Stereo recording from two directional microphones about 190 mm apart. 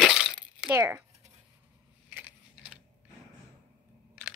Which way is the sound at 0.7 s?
10° right (ahead or behind).